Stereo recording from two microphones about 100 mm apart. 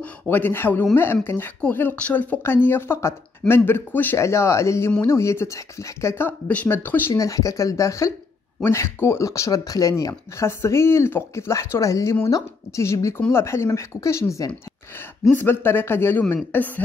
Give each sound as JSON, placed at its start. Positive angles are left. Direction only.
{"t": 0.0, "sound": "speech", "side_deg": 20}
{"t": 7.2, "sound": "speech", "side_deg": 35}